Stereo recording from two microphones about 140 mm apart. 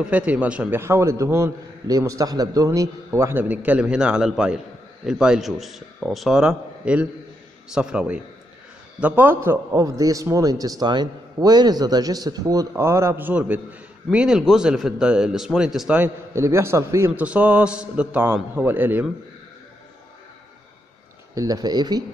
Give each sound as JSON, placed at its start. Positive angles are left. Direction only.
{"t": 0.0, "sound": "a man's voice", "side_deg": -10}
{"t": 16.0, "sound": "a man's voice", "side_deg": -20}
{"t": 21.4, "sound": "a man's voice", "side_deg": -25}